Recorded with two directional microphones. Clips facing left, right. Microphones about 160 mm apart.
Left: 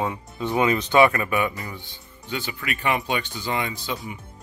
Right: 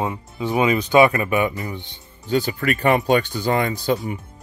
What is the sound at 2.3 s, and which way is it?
Speech, 40° right (ahead or behind).